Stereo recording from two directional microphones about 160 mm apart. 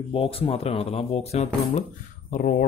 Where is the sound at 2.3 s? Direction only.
60° left (ahead or behind).